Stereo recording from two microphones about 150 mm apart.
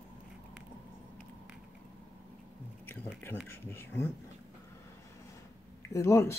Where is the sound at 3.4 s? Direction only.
15° left (ahead or behind).